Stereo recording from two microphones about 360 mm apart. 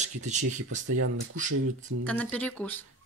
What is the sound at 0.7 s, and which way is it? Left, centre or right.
Speech, right.